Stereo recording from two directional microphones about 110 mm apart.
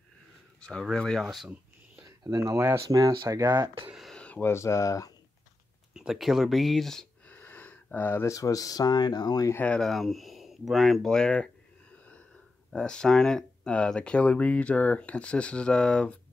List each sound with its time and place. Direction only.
0.6 s speech: 5° left (ahead or behind)
2.0 s a sound: 35° right (ahead or behind)
2.6 s speech: 25° right (ahead or behind)
3.9 s a sound: centre (ahead or behind)
4.2 s a sound: 10° left (ahead or behind)
4.5 s speech: 25° left (ahead or behind)
5.9 s speech: 5° right (ahead or behind)
7.3 s speech: 15° left (ahead or behind); by 9.5 s 40° left (ahead or behind)
9.5 s speech: 15° left (ahead or behind)
9.8 s speech: centre (ahead or behind)
12.7 s speech: 10° left (ahead or behind)